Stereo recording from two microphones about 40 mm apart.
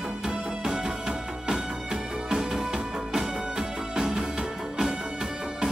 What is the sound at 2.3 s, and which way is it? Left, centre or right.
Music, centre.